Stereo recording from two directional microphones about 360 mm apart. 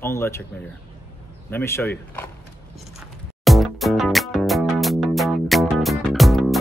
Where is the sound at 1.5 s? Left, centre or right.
Centre.